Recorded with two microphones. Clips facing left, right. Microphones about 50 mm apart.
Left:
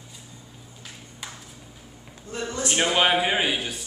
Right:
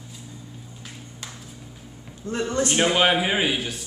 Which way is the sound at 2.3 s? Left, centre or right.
Right.